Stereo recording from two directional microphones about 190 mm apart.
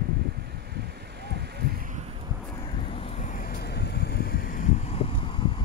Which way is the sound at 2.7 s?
30° left (ahead or behind).